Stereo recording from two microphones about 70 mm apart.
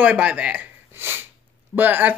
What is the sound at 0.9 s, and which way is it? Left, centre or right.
Sneeze, right.